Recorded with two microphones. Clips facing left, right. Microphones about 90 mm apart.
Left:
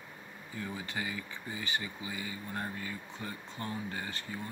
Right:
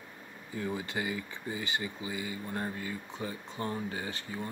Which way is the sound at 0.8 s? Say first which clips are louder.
Right 3 dB; 30° right (ahead or behind).